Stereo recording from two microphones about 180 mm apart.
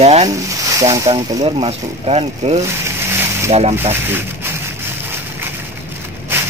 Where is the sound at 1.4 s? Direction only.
35° right (ahead or behind).